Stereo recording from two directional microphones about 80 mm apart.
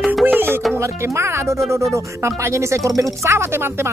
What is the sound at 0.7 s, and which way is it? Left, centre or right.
Speech, right.